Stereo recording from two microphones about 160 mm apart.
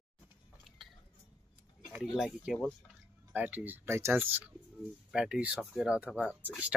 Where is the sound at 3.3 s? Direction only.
10° right (ahead or behind).